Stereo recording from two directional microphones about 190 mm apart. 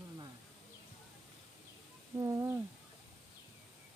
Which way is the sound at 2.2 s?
15° right (ahead or behind).